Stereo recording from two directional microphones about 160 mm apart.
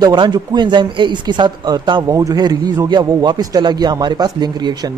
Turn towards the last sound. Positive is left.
turn(degrees=-25)  # may be behind; listen again after turning